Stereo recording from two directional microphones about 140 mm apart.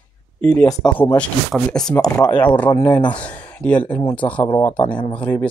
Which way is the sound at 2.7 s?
15° left (ahead or behind).